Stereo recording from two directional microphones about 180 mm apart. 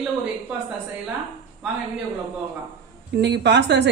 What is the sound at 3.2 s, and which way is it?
Speech, 75° right (ahead or behind).